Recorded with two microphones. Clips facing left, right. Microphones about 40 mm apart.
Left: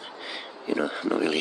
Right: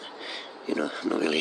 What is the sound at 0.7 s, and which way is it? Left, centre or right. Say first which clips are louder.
Speech: left 2 dB; centre.